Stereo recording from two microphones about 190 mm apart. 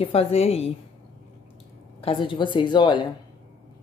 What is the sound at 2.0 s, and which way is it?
Speech, 30° left (ahead or behind).